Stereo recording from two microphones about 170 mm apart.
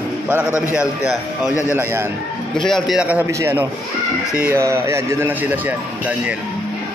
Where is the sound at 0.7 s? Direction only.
5° right (ahead or behind).